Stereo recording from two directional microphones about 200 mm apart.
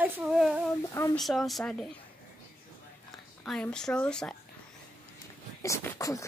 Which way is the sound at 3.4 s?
5° left (ahead or behind).